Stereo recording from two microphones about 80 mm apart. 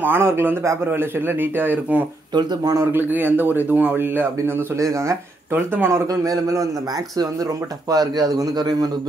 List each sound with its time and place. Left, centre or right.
0.0 s speech: right
2.3 s speech: right
2.8 s speech: right
4.7 s speech: right
5.5 s speech: right
6.0 s a man's voice: right
7.9 s speech: right